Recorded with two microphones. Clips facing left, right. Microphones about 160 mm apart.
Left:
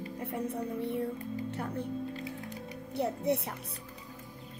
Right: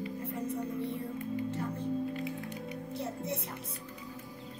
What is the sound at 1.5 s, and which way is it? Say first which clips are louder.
Music: even; 65° left (ahead or behind).